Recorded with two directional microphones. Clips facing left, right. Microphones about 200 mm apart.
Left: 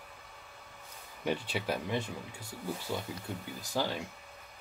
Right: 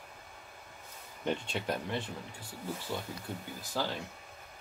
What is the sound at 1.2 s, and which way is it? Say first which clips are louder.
Speech: left 1 dB; 5° left (ahead or behind).